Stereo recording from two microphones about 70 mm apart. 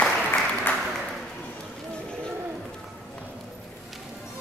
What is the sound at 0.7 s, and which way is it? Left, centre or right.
Applause, left.